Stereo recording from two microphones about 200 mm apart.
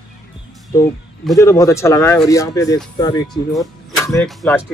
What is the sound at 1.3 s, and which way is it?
Speech, 15° left (ahead or behind).